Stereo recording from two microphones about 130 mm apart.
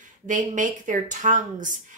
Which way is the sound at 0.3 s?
80° right.